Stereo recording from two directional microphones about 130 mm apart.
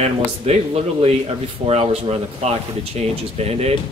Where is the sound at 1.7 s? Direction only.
50° right (ahead or behind).